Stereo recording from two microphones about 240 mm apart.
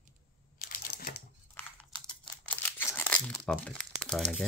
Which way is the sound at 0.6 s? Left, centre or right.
Left.